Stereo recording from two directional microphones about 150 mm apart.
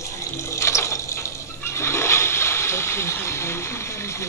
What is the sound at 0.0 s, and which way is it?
Water, 20° left (ahead or behind).